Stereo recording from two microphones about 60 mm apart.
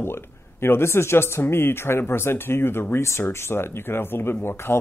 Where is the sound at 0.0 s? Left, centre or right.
Left.